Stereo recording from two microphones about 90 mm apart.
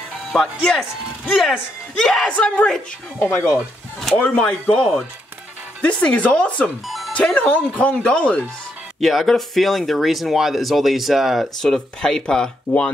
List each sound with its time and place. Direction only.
0.3 s speech: 5° left (ahead or behind)
3.2 s speech: 20° left (ahead or behind)
5.8 s speech: 15° left (ahead or behind)
9.0 s speech: centre (ahead or behind)